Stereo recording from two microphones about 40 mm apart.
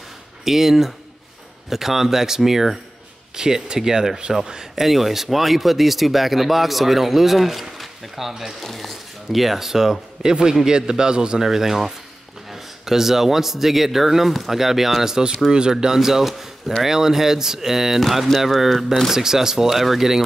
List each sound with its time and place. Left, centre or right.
0.5 s speech: centre
15.5 s speech: centre